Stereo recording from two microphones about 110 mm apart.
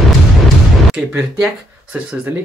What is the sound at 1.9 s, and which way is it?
Speech, 15° right (ahead or behind).